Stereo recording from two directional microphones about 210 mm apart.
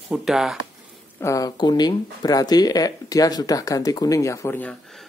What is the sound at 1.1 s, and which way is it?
Speech, 15° left (ahead or behind).